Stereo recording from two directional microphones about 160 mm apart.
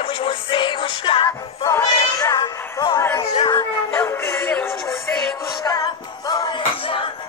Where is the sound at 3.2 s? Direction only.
30° left (ahead or behind).